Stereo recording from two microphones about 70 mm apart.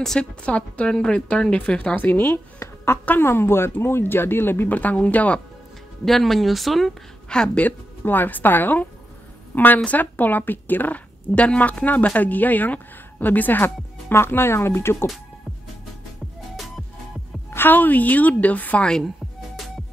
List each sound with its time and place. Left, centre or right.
0.0 s speech: centre
0.4 s a woman's voice: centre
2.0 s speech: left
6.0 s speech: centre
7.2 s speech: centre
7.6 s a woman's voice: left
17.5 s a woman's voice: left